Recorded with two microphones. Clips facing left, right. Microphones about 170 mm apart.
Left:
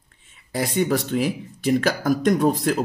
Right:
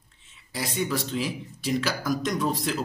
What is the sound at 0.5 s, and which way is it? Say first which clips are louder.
Speech: left 7 dB; 55° left (ahead or behind).